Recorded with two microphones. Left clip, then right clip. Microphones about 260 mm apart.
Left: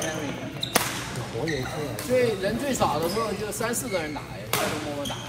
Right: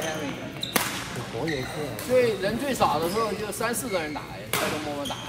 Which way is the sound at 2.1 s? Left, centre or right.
Right.